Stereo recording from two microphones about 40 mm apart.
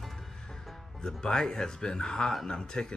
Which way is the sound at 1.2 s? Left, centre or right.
Centre.